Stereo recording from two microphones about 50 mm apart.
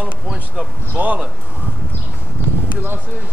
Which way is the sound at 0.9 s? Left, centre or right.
Right.